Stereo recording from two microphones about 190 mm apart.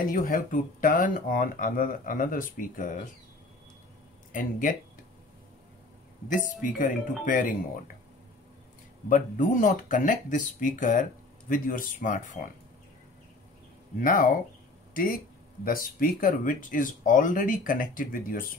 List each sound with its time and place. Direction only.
0.1 s speech: 45° left (ahead or behind)
4.3 s speech: 45° left (ahead or behind)
6.2 s speech: 40° left (ahead or behind)
9.1 s speech: 45° left (ahead or behind)
13.9 s speech: 45° left (ahead or behind)